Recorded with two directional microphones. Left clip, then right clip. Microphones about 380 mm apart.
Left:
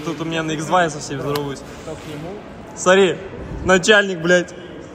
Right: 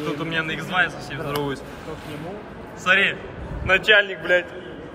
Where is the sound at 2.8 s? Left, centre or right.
Centre.